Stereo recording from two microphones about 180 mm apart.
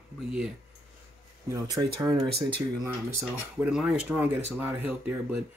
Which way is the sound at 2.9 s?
15° right (ahead or behind).